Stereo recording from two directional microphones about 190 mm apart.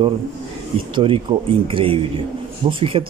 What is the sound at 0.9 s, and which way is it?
Speech, 30° right (ahead or behind).